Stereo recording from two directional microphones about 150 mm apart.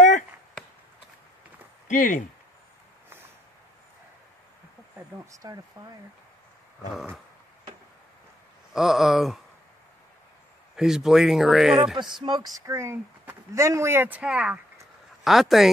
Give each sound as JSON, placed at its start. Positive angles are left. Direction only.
{"t": 1.9, "sound": "speech", "side_deg": 60}
{"t": 4.9, "sound": "speech", "side_deg": -15}
{"t": 8.7, "sound": "speech", "side_deg": 0}
{"t": 10.8, "sound": "speech", "side_deg": -5}
{"t": 12.0, "sound": "speech", "side_deg": -30}
{"t": 12.6, "sound": "speech", "side_deg": -20}